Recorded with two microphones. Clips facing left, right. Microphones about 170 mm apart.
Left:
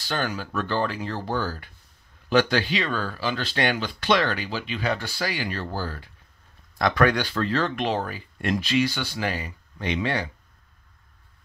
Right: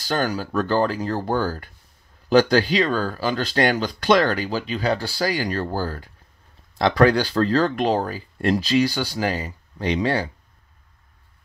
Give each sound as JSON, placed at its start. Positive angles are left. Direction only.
{"t": 0.0, "sound": "speech", "side_deg": -40}
{"t": 6.8, "sound": "speech", "side_deg": -30}